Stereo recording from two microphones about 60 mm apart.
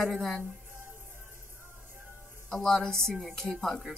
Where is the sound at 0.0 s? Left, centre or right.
Centre.